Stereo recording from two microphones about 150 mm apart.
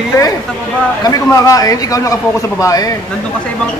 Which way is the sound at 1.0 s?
25° left (ahead or behind).